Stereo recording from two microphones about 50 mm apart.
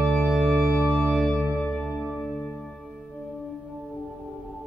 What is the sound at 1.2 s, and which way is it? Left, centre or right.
Music, centre.